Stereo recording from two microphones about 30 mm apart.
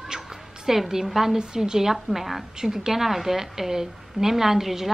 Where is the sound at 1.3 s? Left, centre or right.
Right; by 2.4 s centre.